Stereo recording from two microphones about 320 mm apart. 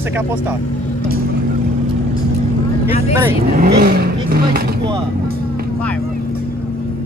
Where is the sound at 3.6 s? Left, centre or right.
Right.